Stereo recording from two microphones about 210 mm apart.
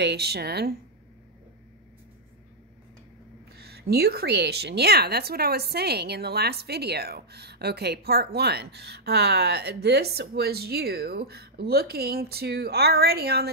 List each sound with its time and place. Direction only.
0.0 s a woman's voice: 50° right (ahead or behind)
3.5 s a woman's voice: 50° right (ahead or behind)